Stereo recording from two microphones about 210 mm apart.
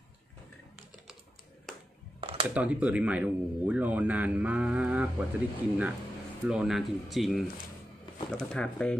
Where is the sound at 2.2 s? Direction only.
25° right (ahead or behind).